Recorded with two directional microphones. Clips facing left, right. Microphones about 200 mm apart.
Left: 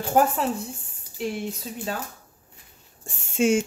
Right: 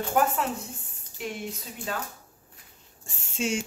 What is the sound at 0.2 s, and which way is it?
Speech, 35° left (ahead or behind).